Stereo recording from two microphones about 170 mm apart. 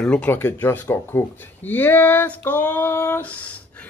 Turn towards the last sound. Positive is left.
turn(degrees=10)  # may be behind; listen again after turning